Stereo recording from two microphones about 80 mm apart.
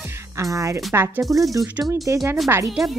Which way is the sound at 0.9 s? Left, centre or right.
Right.